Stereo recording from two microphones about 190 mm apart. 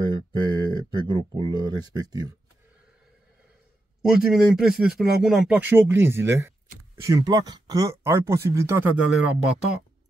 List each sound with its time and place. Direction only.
0.0 s speech: 25° right (ahead or behind)
4.0 s speech: centre (ahead or behind)